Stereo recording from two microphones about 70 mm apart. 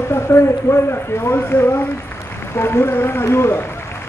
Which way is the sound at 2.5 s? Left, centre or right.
Left.